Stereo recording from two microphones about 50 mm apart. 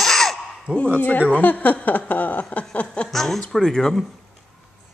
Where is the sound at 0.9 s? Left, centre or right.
Left.